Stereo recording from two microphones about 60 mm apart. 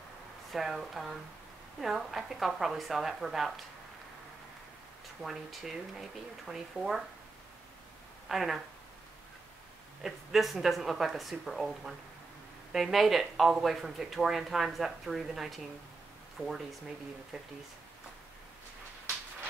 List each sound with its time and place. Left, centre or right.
0.5 s speech: centre
5.2 s speech: centre
8.3 s speech: centre
10.0 s speech: centre
16.4 s speech: centre
17.3 s speech: centre